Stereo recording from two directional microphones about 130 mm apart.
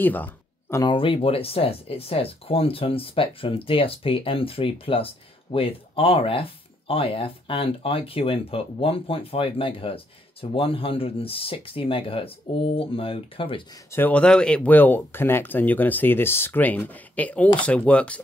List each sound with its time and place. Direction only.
0.0 s a sound: 15° left (ahead or behind)
0.8 s speech: 45° left (ahead or behind)
13.8 s speech: 15° left (ahead or behind)